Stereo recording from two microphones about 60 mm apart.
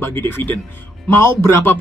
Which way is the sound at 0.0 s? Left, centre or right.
Left.